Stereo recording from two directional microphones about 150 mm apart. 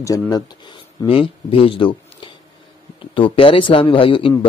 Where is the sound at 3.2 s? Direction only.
35° left (ahead or behind).